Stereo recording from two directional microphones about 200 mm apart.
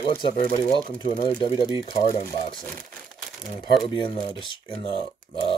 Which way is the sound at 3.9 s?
25° left (ahead or behind).